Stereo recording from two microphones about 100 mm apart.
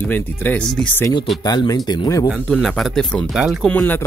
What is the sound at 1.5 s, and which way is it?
Speech, 40° left (ahead or behind).